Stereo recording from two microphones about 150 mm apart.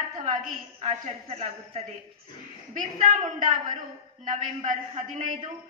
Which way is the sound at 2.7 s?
60° right (ahead or behind).